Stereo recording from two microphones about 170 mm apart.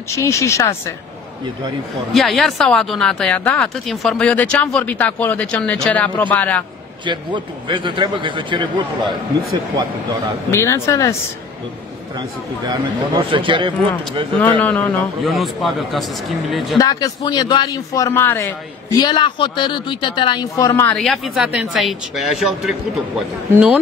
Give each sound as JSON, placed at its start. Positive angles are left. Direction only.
{"t": 0.1, "sound": "speech", "side_deg": 15}
{"t": 2.1, "sound": "speech", "side_deg": 0}
{"t": 7.1, "sound": "a man's voice", "side_deg": -30}
{"t": 10.5, "sound": "speech", "side_deg": 15}
{"t": 12.2, "sound": "a man's voice", "side_deg": -25}
{"t": 14.4, "sound": "a man's voice", "side_deg": 10}
{"t": 16.7, "sound": "a man's voice", "side_deg": 20}
{"t": 21.0, "sound": "a man's voice", "side_deg": 0}